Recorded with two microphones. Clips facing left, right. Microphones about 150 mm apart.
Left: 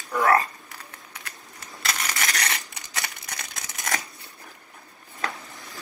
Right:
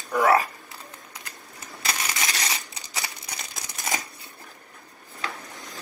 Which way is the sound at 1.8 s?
25° right (ahead or behind).